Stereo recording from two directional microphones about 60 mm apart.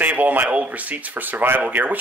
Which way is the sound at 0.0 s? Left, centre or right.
Right.